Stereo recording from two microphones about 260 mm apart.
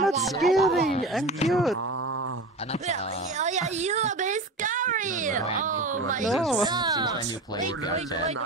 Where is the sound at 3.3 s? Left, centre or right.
Right.